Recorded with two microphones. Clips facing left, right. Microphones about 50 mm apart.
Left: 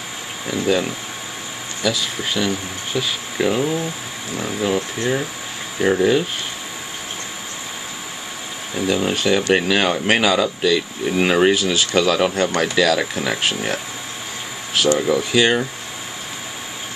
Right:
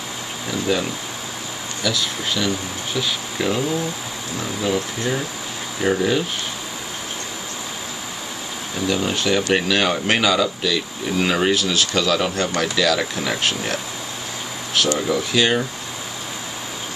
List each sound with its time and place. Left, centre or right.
0.5 s speech: centre
8.7 s speech: centre
15.0 s speech: centre